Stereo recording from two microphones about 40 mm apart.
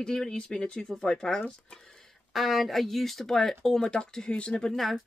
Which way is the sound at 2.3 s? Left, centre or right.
Centre.